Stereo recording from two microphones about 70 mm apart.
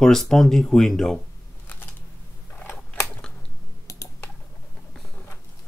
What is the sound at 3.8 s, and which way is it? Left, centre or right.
Typing, left.